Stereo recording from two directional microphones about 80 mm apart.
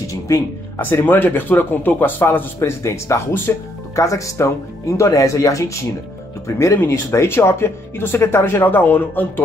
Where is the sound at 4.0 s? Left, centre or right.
Left.